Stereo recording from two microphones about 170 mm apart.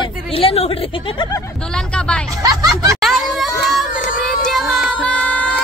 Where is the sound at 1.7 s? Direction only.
5° left (ahead or behind).